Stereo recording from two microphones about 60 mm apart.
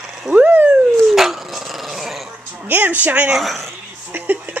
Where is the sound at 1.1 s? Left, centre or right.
Centre.